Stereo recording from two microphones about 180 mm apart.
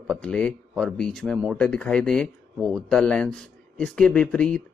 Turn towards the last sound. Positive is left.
turn(degrees=5)  # may be behind; listen again after turning